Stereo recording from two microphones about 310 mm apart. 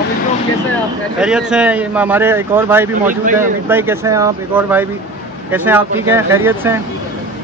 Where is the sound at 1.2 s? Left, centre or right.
Centre.